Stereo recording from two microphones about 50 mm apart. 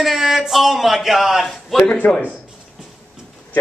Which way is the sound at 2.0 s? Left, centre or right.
Left.